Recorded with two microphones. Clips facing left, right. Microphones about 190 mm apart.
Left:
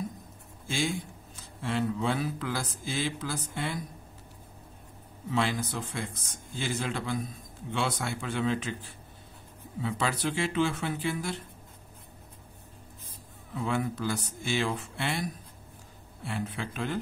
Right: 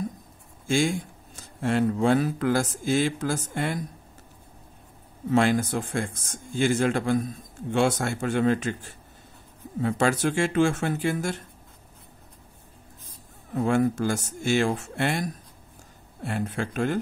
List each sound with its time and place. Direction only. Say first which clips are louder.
0.7 s speech: right 7 dB; 50° right (ahead or behind)
5.3 s speech: right 8 dB; 50° right (ahead or behind)
13.5 s speech: right 8 dB; 45° right (ahead or behind)